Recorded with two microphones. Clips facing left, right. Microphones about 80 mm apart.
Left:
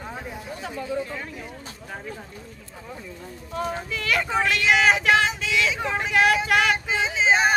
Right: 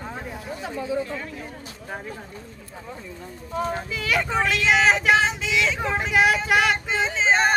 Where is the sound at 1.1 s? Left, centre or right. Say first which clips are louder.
Right 2 dB; centre.